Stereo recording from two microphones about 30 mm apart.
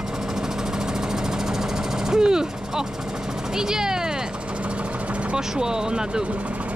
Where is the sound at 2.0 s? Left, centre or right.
Right.